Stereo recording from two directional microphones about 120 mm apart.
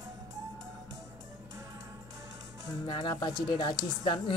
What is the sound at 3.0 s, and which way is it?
Speech, 40° left (ahead or behind).